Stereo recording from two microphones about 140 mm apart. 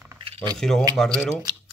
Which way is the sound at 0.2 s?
40° right (ahead or behind).